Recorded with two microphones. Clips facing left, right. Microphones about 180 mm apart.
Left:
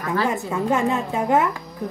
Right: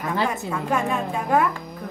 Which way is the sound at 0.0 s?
20° right (ahead or behind).